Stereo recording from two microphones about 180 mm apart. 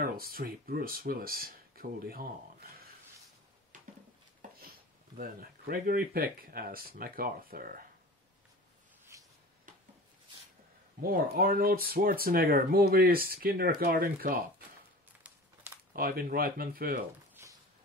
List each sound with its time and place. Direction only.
0.0 s speech: 55° right (ahead or behind)
5.1 s speech: 55° right (ahead or behind)
9.1 s a sound: 15° right (ahead or behind)
11.0 s speech: 55° right (ahead or behind)
15.9 s speech: 55° right (ahead or behind)
17.4 s a sound: 15° right (ahead or behind)